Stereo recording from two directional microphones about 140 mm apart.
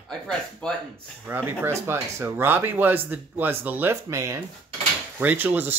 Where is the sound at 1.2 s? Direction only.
15° right (ahead or behind).